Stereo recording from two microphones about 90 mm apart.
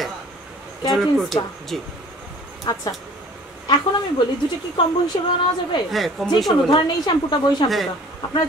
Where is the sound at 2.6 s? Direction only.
45° left (ahead or behind).